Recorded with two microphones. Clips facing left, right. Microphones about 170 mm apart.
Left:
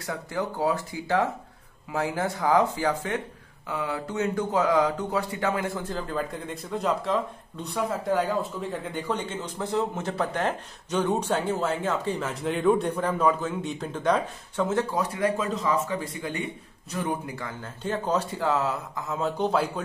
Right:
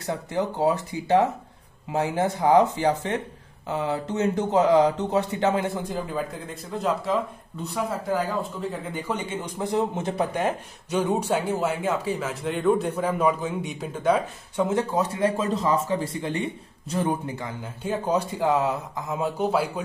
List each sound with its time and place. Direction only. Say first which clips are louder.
0.0 s speech: right 3 dB; 20° right (ahead or behind); by 14.7 s 5° right (ahead or behind)
14.7 s speech: right 2 dB; 20° right (ahead or behind)